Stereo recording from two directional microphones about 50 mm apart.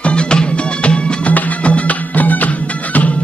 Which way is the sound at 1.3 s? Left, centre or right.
Left.